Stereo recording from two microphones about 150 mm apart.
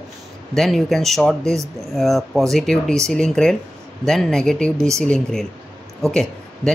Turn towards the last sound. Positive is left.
turn(degrees=5)  # may be behind; listen again after turning